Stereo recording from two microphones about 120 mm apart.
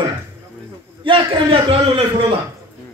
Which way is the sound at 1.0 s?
45° right (ahead or behind).